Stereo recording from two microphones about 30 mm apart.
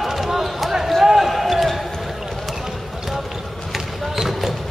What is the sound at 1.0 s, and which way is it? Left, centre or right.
Basketball bounce, centre.